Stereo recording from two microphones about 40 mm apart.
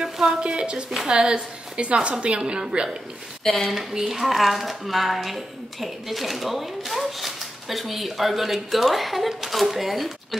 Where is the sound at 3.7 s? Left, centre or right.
Centre.